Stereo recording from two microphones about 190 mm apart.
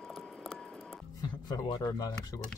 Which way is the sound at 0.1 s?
Centre (ahead or behind).